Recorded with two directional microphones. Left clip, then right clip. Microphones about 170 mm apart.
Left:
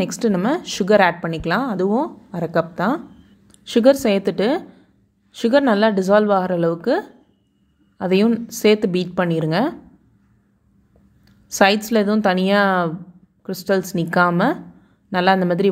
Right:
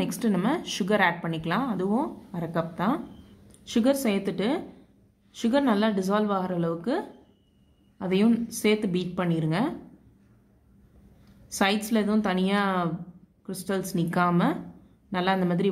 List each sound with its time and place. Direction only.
0.0 s a woman's voice: 30° left (ahead or behind)
11.4 s a woman's voice: 35° left (ahead or behind)